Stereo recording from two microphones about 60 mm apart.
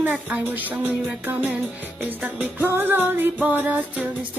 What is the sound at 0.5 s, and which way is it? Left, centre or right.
Music, right.